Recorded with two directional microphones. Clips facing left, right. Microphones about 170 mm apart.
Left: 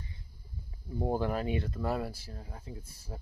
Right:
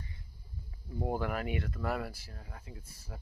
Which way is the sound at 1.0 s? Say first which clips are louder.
Left 3 dB; 30° left (ahead or behind).